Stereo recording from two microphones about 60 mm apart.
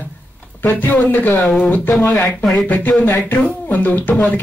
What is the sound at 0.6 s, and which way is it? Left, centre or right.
Speech, left.